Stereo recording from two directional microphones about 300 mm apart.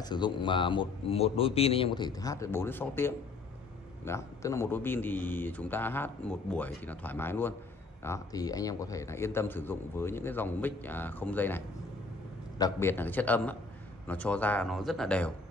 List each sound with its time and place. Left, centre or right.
0.0 s a man's voice: centre